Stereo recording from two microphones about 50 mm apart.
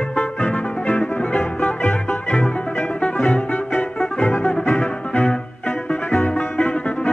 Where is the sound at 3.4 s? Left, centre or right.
Left.